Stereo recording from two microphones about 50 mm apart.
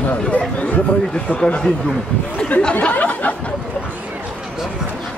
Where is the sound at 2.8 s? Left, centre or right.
Left.